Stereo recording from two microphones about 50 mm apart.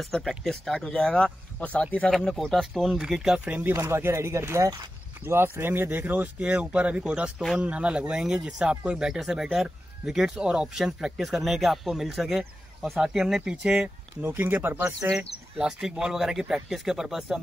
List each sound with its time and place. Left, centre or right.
0.0 s speech: centre; by 2.0 s left
2.0 s speech: centre
3.0 s speech: centre
3.3 s speech: right
3.7 s speech: right
5.2 s speech: right
6.5 s speech: right; by 13.4 s centre
13.5 s speech: centre
14.2 s speech: right
15.1 s speech: centre